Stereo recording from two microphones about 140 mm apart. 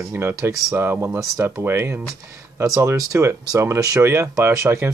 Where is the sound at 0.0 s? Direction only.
15° right (ahead or behind).